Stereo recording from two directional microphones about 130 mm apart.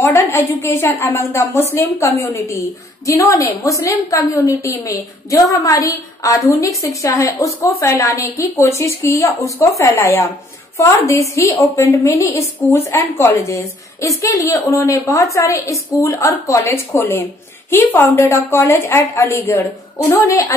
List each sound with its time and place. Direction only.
0.0 s a woman's voice: 20° left (ahead or behind)